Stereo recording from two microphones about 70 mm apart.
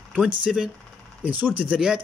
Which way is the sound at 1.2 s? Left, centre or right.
Right.